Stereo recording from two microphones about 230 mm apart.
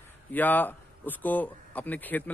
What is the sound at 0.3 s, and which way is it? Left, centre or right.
A man's voice, centre.